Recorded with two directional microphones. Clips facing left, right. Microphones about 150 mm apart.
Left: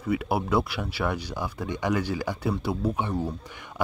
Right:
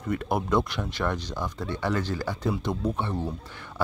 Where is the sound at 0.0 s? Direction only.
5° left (ahead or behind).